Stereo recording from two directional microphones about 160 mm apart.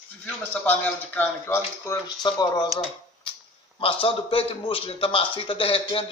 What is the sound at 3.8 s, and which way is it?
A man's voice, 35° left (ahead or behind).